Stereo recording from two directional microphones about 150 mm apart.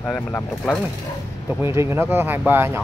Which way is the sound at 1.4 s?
15° right (ahead or behind).